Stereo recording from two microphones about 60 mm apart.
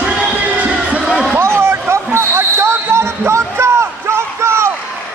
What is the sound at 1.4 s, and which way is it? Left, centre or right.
Basketball bounce, right.